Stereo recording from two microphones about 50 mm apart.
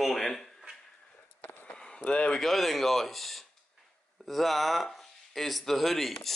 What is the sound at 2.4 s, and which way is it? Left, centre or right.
Speech, centre.